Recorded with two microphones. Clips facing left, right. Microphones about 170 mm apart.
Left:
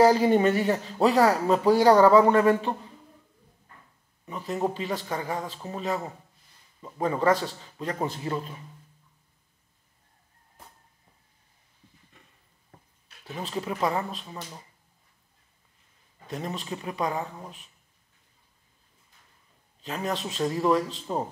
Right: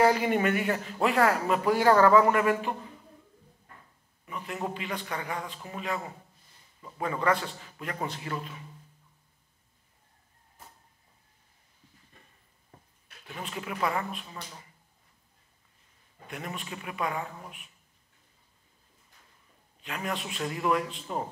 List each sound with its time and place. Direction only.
0.0 s speech: 35° left (ahead or behind)
4.3 s speech: 35° left (ahead or behind)
13.4 s speech: 35° left (ahead or behind)
16.3 s speech: 35° left (ahead or behind)
19.8 s speech: 35° left (ahead or behind)